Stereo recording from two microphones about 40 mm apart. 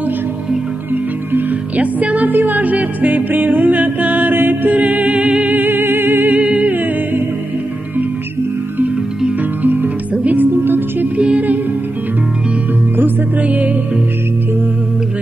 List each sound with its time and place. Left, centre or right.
1.8 s music: right
4.3 s mantra: right
4.7 s music: right
5.6 s music: right
6.3 s music: right
9.6 s music: right
11.1 s music: right
13.4 s music: right